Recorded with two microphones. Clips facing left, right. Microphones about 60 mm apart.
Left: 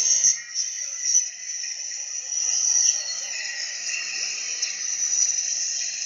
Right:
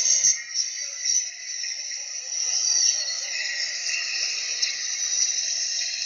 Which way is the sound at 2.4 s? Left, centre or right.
Right.